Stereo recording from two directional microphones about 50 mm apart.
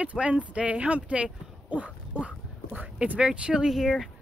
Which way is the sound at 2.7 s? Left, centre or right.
Right.